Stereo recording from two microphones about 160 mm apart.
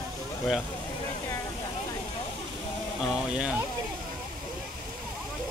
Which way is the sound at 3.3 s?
5° right (ahead or behind).